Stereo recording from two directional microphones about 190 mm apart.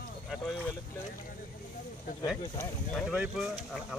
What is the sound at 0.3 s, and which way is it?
Speech, centre (ahead or behind).